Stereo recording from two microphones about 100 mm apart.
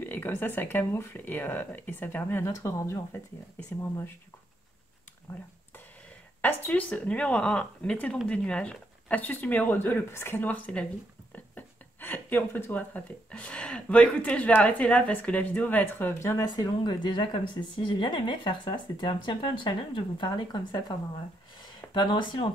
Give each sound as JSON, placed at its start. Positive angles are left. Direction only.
{"t": 0.0, "sound": "speech", "side_deg": 20}
{"t": 6.4, "sound": "speech", "side_deg": 15}
{"t": 16.4, "sound": "speech", "side_deg": 45}
{"t": 21.9, "sound": "speech", "side_deg": 50}